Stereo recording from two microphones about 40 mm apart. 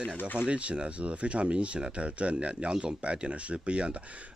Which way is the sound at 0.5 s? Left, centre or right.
Right.